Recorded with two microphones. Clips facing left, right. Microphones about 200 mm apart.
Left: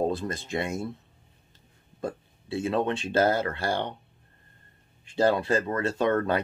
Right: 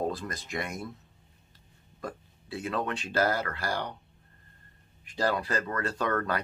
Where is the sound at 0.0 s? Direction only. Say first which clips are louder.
Left 5 dB; 25° left (ahead or behind).